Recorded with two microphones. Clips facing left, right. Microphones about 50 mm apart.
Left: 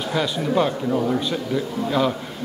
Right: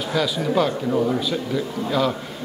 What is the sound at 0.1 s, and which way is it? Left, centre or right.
Speech, centre.